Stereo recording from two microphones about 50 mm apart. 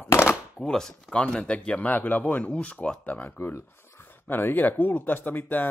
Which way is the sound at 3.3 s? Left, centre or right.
Left.